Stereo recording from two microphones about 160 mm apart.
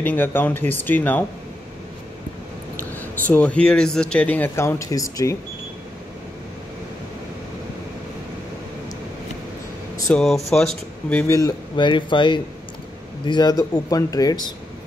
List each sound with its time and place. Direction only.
0.0 s speech: 10° left (ahead or behind)
3.0 s speech: 10° left (ahead or behind)
10.1 s speech: centre (ahead or behind)
11.2 s speech: 20° left (ahead or behind)